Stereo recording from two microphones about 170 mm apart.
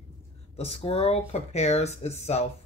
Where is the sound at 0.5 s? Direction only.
35° left (ahead or behind).